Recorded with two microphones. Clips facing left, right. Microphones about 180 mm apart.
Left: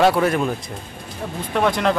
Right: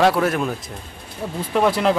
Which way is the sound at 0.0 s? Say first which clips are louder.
Left 1 dB; centre (ahead or behind).